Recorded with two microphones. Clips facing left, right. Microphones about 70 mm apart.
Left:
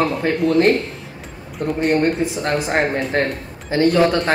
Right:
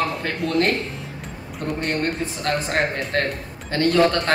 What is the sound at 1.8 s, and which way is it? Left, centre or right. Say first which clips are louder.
A man's voice: left 8 dB; centre.